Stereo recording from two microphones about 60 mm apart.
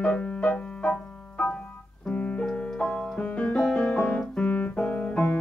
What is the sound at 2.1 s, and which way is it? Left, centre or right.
Keyboard, left.